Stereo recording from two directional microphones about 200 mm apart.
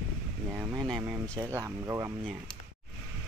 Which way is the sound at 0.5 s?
20° right (ahead or behind).